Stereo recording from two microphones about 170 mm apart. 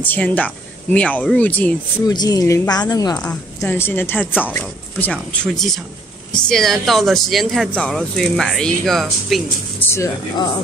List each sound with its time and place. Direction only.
0.0 s speech: 10° left (ahead or behind)
2.0 s speech: 20° left (ahead or behind); by 9.4 s centre (ahead or behind)
9.8 s speech: 20° left (ahead or behind)